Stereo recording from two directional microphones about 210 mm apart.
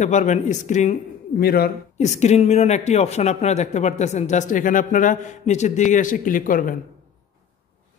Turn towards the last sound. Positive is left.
turn(degrees=40)  # may be behind; listen again after turning